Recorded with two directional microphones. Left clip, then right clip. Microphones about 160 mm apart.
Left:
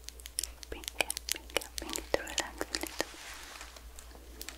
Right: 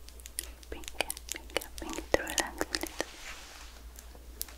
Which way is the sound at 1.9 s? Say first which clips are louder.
Right 3 dB; 15° right (ahead or behind).